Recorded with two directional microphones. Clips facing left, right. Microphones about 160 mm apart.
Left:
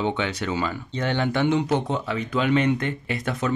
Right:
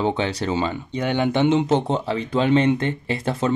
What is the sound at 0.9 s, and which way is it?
Speech, 15° right (ahead or behind).